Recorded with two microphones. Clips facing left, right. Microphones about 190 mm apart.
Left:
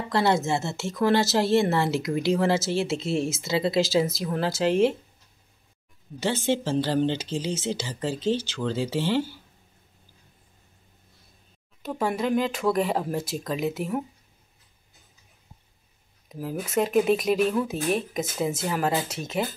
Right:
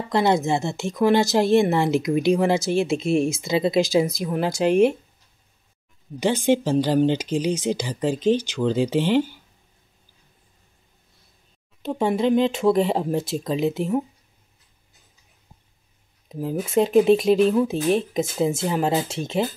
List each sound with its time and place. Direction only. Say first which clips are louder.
0.1 s a woman's voice: right 3 dB; 15° right (ahead or behind)
6.1 s a woman's voice: right 5 dB; 15° right (ahead or behind)
11.8 s speech: right 5 dB; 25° right (ahead or behind)
16.3 s speech: right 5 dB; 25° right (ahead or behind)